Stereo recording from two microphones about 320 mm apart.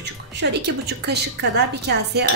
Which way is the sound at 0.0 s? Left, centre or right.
Right.